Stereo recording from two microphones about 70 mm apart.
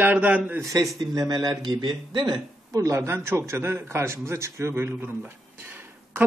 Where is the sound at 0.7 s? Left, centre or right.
Right.